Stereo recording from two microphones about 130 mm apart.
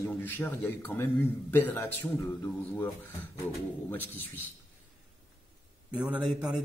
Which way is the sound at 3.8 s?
15° left (ahead or behind).